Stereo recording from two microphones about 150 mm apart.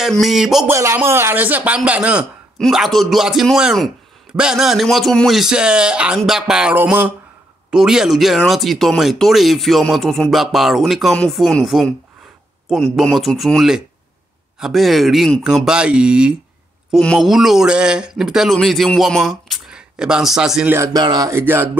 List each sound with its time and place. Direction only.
0.0 s a man's voice: centre (ahead or behind)
0.7 s a man's voice: 15° right (ahead or behind)
20.7 s speech: 20° right (ahead or behind)